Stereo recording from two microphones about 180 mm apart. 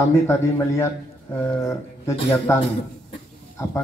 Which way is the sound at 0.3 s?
15° left (ahead or behind).